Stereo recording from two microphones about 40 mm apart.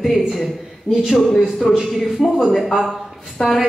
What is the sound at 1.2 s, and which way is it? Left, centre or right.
Speech, centre.